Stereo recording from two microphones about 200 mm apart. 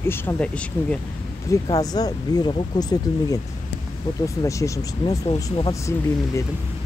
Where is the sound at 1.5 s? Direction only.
20° left (ahead or behind).